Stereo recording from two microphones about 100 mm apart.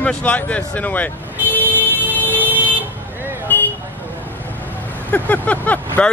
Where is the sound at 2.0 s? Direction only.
20° left (ahead or behind).